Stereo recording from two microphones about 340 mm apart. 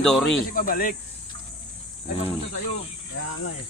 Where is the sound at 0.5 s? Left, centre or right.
Left.